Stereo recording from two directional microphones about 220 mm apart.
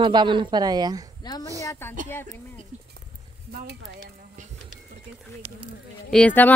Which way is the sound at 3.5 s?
45° right (ahead or behind).